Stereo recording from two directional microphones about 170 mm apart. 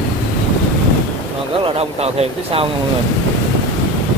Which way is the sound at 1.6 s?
35° right (ahead or behind).